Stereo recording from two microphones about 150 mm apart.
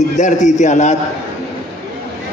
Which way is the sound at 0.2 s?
55° left (ahead or behind).